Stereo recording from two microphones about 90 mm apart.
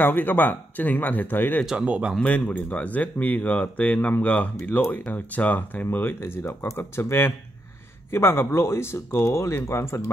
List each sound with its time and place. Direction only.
0.0 s speech: 20° left (ahead or behind)
1.7 s speech: 10° right (ahead or behind)
2.1 s speech: 10° left (ahead or behind); by 10.1 s 30° left (ahead or behind)